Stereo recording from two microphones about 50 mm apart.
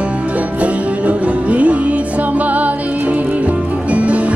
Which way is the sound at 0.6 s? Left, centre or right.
Right.